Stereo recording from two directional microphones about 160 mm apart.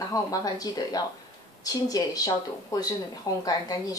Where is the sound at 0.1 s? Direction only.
20° left (ahead or behind).